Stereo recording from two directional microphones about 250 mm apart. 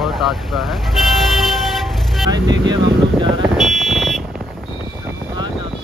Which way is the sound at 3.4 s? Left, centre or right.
Centre.